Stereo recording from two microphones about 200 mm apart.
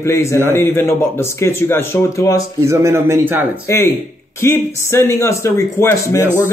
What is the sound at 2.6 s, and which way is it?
Speech, 15° right (ahead or behind).